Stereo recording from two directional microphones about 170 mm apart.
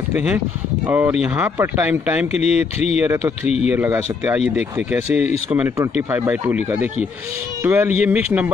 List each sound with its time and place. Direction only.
0.8 s speech: 10° right (ahead or behind)
2.4 s speech: 40° left (ahead or behind)
3.0 s speech: 15° right (ahead or behind)
7.6 s speech: 10° right (ahead or behind)